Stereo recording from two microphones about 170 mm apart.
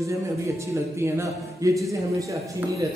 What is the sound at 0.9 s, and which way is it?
Speech, 15° right (ahead or behind).